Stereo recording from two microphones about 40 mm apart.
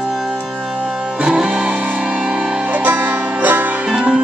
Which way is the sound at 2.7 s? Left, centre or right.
Right.